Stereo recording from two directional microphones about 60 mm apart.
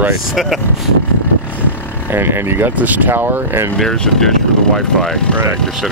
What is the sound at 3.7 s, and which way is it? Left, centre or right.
Speech, centre.